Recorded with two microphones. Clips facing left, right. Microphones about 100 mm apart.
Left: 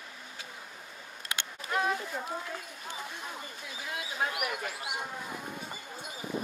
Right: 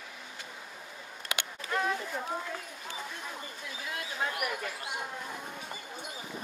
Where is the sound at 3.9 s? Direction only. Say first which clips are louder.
Left 1 dB; 10° left (ahead or behind).